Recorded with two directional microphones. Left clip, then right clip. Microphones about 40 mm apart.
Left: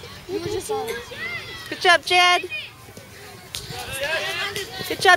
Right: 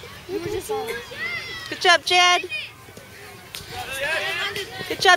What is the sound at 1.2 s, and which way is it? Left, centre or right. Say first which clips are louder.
Speech: right 4 dB; right.